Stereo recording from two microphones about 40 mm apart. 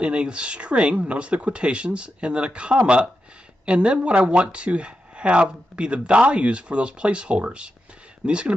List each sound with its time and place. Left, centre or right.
0.0 s speech: right